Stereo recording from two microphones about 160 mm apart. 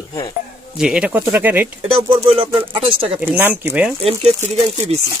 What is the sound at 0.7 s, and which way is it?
Speech, 5° right (ahead or behind).